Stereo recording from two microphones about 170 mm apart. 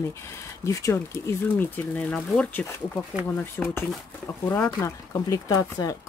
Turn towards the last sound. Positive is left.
turn(degrees=20)  # may be behind; listen again after turning